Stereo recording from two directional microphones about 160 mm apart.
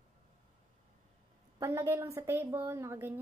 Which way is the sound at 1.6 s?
20° right (ahead or behind).